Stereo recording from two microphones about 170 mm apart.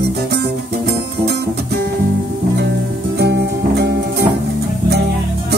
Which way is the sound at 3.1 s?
75° right (ahead or behind).